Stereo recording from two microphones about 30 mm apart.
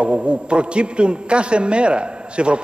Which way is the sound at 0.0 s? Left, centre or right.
Right.